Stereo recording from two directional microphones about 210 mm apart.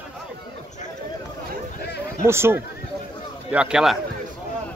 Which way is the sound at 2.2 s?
10° right (ahead or behind).